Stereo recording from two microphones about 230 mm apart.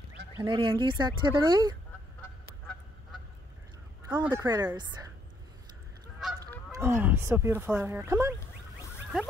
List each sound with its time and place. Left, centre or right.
0.4 s speech: right
4.2 s speech: centre
6.1 s goose: centre
6.7 s speech: centre